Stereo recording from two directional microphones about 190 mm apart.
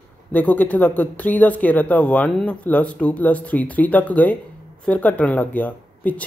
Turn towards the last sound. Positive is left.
turn(degrees=10)  # may be behind; listen again after turning